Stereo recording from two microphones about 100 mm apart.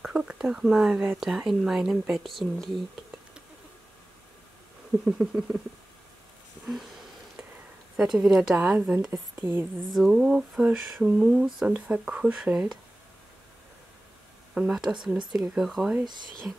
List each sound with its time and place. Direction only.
0.0 s speech: 10° right (ahead or behind)
5.0 s a woman's voice: 10° right (ahead or behind)
6.6 s a sound: centre (ahead or behind)
8.0 s a woman's voice: 5° right (ahead or behind)
9.4 s a woman's voice: 25° right (ahead or behind)
9.8 s a woman's voice: centre (ahead or behind)
14.5 s speech: 5° right (ahead or behind)